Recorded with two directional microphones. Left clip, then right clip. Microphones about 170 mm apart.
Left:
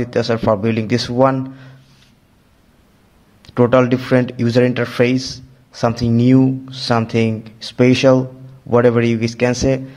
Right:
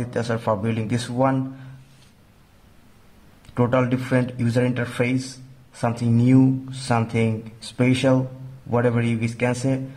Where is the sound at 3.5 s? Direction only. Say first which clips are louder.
Left 8 dB; 30° left (ahead or behind).